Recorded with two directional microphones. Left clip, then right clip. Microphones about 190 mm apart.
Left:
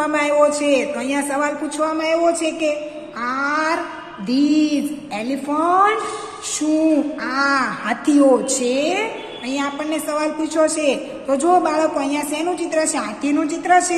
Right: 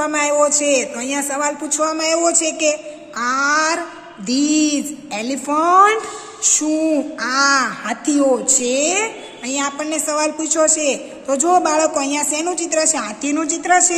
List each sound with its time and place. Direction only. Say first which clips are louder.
0.0 s a woman's voice: even; 20° right (ahead or behind)